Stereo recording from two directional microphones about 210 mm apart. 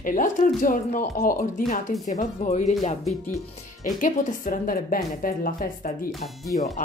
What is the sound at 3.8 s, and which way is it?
Speech, 40° left (ahead or behind).